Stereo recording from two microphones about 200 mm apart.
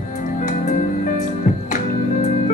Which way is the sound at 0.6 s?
40° left (ahead or behind).